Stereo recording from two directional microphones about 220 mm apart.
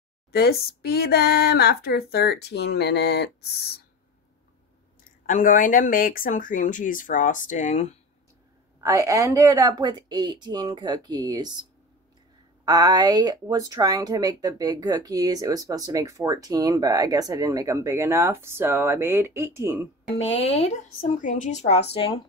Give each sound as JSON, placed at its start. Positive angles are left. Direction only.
{"t": 0.3, "sound": "speech", "side_deg": 45}
{"t": 5.2, "sound": "speech", "side_deg": 35}
{"t": 8.8, "sound": "speech", "side_deg": -15}
{"t": 12.6, "sound": "speech", "side_deg": -15}
{"t": 20.3, "sound": "speech", "side_deg": 25}